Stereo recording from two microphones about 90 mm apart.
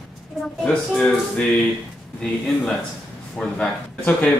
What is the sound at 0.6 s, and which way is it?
Speech, 5° left (ahead or behind).